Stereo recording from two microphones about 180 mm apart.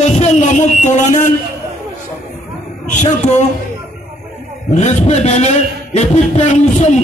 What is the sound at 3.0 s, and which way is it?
Speech, 40° left (ahead or behind).